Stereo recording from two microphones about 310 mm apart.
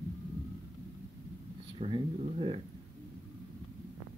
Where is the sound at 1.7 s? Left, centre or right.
Centre.